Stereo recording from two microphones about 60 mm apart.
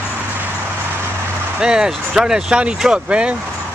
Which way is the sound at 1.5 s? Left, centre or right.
Centre.